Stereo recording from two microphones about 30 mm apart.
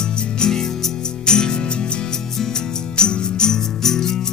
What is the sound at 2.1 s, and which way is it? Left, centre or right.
Music, centre.